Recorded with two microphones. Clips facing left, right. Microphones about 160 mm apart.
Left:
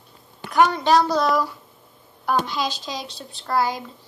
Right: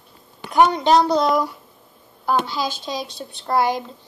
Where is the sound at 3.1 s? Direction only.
25° right (ahead or behind).